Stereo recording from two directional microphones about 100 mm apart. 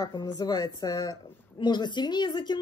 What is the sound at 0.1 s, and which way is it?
Speech, 40° left (ahead or behind).